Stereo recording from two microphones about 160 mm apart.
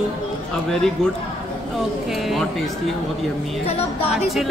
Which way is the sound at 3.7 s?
40° left (ahead or behind).